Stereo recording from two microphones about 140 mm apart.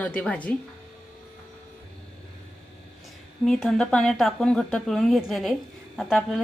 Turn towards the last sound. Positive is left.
turn(degrees=0)  # may be behind; listen again after turning